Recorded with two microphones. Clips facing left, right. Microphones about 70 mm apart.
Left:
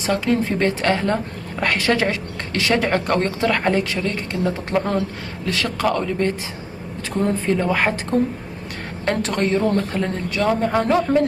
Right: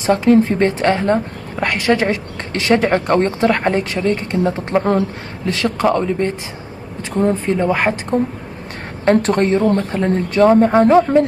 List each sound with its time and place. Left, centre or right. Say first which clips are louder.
0.0 s a woman's voice: right 7 dB; right
9.6 s a woman's voice: right 4 dB; right
10.1 s a woman's voice: right 11 dB; right